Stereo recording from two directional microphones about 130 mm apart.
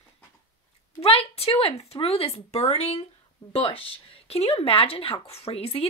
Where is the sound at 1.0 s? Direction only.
50° left (ahead or behind).